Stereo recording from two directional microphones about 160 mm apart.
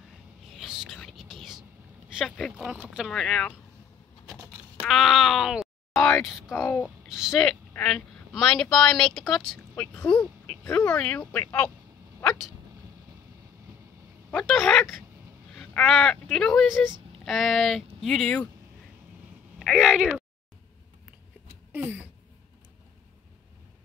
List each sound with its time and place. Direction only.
0.5 s whispering: centre (ahead or behind)
2.1 s speech: centre (ahead or behind)
4.7 s speech: centre (ahead or behind)
6.5 s speech: 15° left (ahead or behind)
7.1 s speech: 5° right (ahead or behind)
14.3 s speech: centre (ahead or behind)
19.6 s speech: centre (ahead or behind)
21.7 s speech: 10° right (ahead or behind)